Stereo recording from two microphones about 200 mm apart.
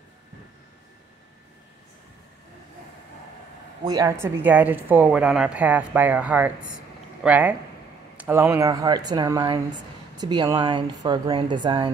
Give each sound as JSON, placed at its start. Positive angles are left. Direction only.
{"t": 3.8, "sound": "a woman's voice", "side_deg": -15}